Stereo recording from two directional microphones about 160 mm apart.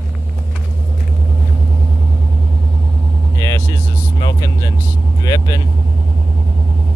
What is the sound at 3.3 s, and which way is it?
Vehicle, 20° left (ahead or behind).